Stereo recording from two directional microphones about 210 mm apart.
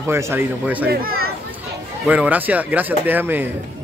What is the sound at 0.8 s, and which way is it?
Speech, 45° right (ahead or behind).